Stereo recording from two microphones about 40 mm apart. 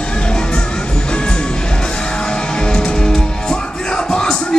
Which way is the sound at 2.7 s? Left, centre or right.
Left.